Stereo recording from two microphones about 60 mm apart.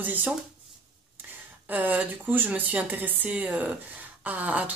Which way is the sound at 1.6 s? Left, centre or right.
Right.